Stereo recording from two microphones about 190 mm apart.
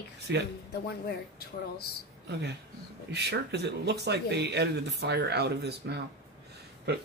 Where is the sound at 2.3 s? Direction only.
60° right (ahead or behind).